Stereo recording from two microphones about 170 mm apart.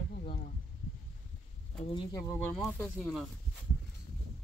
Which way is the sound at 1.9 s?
25° left (ahead or behind).